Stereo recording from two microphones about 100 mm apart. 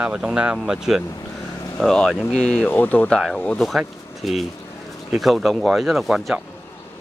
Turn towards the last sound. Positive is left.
turn(degrees=0)  # may be behind; listen again after turning